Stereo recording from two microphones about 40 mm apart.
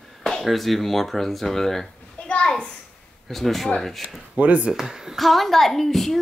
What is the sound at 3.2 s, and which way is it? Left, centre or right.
Speech, centre.